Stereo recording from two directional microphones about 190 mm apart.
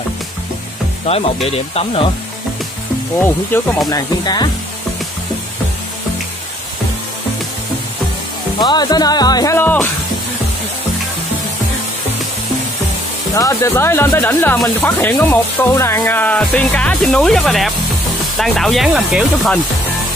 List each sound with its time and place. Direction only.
1.0 s speech: 30° left (ahead or behind)
3.5 s speech: 10° left (ahead or behind)
3.9 s speech: 20° left (ahead or behind)
8.5 s speech: 20° left (ahead or behind)
13.3 s speech: 20° left (ahead or behind); by 19.5 s centre (ahead or behind)